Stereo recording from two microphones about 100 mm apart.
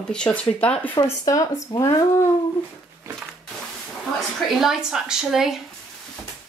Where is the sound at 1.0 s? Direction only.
35° left (ahead or behind).